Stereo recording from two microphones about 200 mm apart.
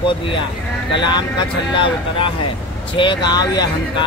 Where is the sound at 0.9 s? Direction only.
20° left (ahead or behind).